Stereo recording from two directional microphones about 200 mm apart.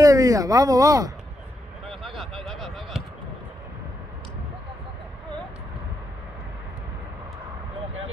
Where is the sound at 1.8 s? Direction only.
Centre (ahead or behind).